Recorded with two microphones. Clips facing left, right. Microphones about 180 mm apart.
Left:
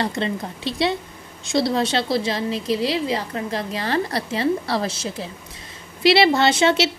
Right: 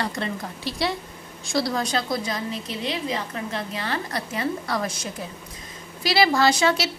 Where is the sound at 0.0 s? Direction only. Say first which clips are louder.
Left 4 dB; 20° left (ahead or behind).